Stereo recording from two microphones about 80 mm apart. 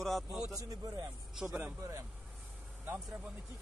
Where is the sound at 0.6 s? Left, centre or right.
Right.